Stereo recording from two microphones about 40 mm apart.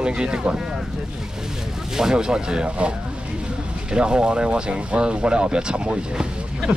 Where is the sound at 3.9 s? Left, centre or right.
Right.